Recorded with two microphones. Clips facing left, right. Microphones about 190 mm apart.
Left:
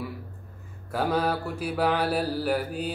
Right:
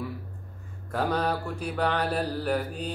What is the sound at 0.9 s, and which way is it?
Mantra, 5° left (ahead or behind).